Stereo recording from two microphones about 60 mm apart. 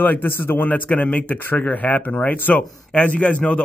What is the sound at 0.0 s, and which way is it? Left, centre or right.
Speech, left.